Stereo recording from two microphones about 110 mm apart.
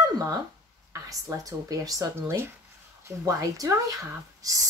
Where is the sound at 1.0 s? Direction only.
30° right (ahead or behind).